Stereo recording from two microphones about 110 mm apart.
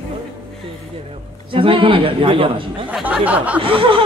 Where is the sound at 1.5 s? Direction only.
55° right (ahead or behind).